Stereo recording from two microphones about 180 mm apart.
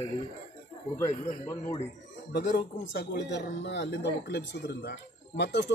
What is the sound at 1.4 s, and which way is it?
Speech, 15° left (ahead or behind).